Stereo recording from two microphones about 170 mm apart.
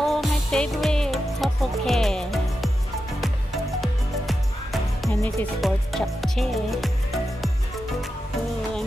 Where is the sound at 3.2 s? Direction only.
Centre (ahead or behind).